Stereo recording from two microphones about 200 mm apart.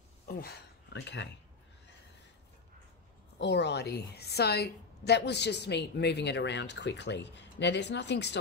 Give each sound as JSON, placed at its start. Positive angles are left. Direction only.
{"t": 0.3, "sound": "speech", "side_deg": 50}
{"t": 3.3, "sound": "a woman's voice", "side_deg": 60}